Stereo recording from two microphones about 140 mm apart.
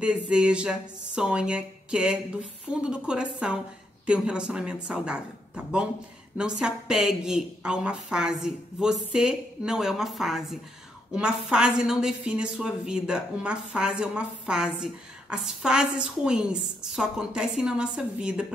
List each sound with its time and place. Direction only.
0.0 s a woman's voice: 5° right (ahead or behind)